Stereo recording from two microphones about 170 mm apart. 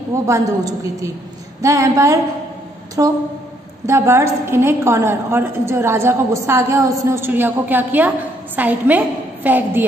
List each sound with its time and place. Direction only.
0.1 s a woman's voice: 20° right (ahead or behind)